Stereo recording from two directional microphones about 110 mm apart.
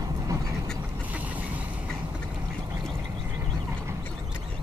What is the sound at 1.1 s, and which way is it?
Vehicle, 15° right (ahead or behind).